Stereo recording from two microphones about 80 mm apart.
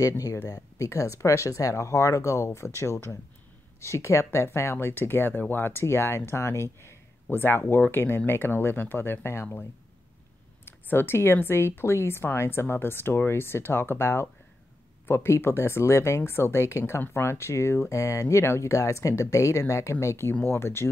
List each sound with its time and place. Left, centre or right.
0.0 s speech: left